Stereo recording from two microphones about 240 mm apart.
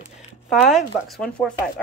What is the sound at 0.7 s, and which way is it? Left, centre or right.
Speech, centre.